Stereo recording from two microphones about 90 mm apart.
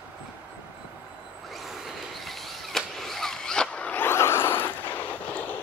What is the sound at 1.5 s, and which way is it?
Vehicle, centre (ahead or behind).